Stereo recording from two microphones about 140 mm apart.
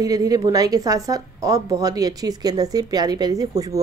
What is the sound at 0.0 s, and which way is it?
A woman's voice, 25° right (ahead or behind).